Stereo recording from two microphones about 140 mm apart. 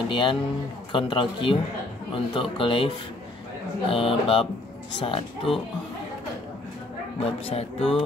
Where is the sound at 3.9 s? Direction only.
40° left (ahead or behind).